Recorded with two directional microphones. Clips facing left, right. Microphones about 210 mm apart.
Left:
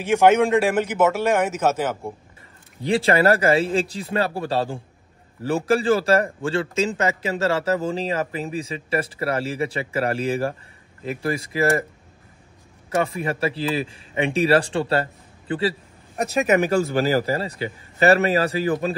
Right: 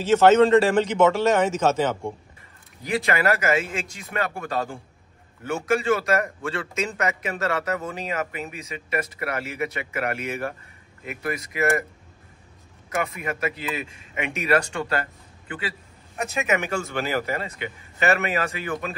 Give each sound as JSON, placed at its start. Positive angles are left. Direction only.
{"t": 0.0, "sound": "a man's voice", "side_deg": 10}
{"t": 2.8, "sound": "a man's voice", "side_deg": 30}
{"t": 12.9, "sound": "a man's voice", "side_deg": 30}